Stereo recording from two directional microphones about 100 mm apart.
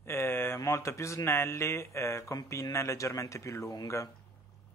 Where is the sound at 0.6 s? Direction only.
30° left (ahead or behind).